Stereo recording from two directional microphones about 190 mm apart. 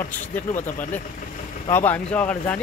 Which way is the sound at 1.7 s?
10° left (ahead or behind).